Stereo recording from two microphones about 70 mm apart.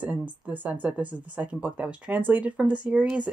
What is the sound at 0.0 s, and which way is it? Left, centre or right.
Speech, right.